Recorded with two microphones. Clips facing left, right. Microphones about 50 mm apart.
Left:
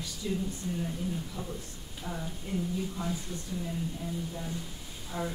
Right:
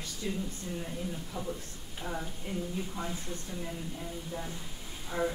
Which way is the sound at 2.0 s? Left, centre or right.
Centre.